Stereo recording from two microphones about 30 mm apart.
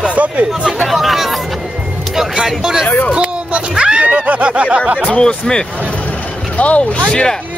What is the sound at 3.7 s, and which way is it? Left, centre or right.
Music, right.